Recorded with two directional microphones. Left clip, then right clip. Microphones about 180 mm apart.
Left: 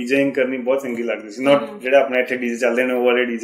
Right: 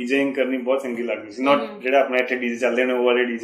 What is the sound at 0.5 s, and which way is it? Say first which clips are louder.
Speech: left 2 dB; 30° left (ahead or behind).